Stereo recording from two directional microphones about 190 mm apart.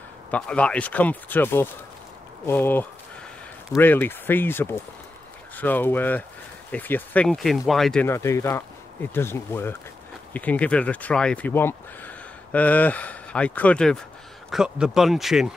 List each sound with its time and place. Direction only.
0.3 s speech: 5° left (ahead or behind)
8.1 s speech: 15° left (ahead or behind); by 15.5 s centre (ahead or behind)